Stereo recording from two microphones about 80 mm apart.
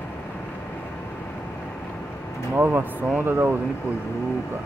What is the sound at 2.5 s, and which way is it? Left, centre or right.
Speech, right.